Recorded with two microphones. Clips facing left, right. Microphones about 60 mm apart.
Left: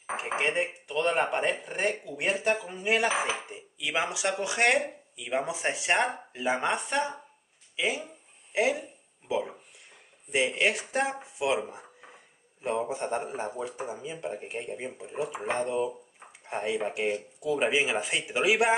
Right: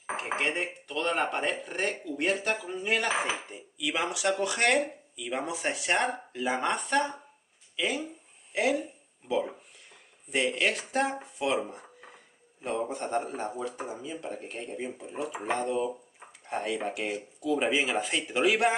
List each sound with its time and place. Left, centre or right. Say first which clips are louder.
0.1 s a man's voice: left 1 dB; centre
9.3 s a man's voice: right 1 dB; centre
15.6 s a man's voice: left 1 dB; centre